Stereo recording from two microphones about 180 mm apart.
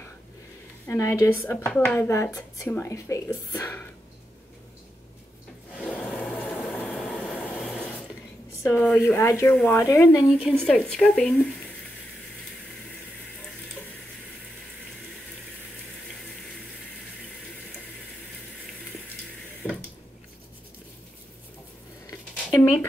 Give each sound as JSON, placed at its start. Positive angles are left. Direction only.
{"t": 0.8, "sound": "speech", "side_deg": 15}
{"t": 5.8, "sound": "train", "side_deg": 5}
{"t": 8.6, "sound": "speech", "side_deg": 10}
{"t": 10.2, "sound": "speech", "side_deg": -5}
{"t": 19.6, "sound": "a sound", "side_deg": 10}
{"t": 22.6, "sound": "a sound", "side_deg": 10}